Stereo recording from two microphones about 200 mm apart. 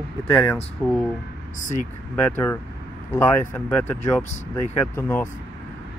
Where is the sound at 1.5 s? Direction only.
40° left (ahead or behind).